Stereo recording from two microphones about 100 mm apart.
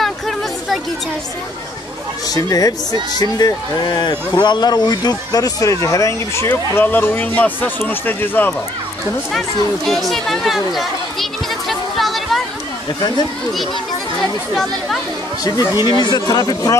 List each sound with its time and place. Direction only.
0.0 s a sound: centre (ahead or behind)
2.2 s speech: 40° left (ahead or behind)
6.5 s speech: 20° left (ahead or behind)
9.8 s chatter: 5° left (ahead or behind)
14.5 s speech: centre (ahead or behind)
15.4 s speech: 35° left (ahead or behind)
15.8 s speech: 45° left (ahead or behind)